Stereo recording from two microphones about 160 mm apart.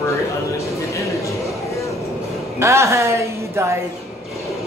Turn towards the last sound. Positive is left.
turn(degrees=-15)  # may be behind; listen again after turning